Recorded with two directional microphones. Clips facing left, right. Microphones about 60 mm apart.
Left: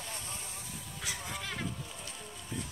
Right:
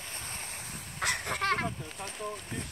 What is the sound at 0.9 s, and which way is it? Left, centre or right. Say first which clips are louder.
Fowl: right 9 dB; right.